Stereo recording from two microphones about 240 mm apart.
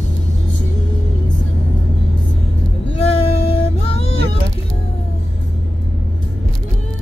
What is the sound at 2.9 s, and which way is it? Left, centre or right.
Music, left.